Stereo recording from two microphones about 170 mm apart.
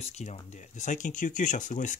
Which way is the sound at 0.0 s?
40° left (ahead or behind).